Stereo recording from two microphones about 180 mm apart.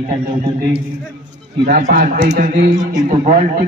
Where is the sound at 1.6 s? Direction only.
50° right (ahead or behind).